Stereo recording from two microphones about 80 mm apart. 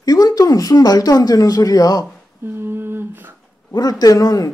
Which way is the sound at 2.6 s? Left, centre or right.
Right.